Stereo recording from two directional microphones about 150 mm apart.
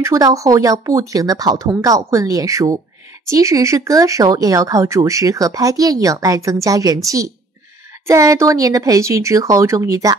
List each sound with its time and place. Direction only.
0.0 s speech: 20° right (ahead or behind)